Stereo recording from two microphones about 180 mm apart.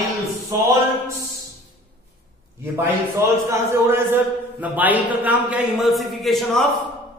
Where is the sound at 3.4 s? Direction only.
10° right (ahead or behind).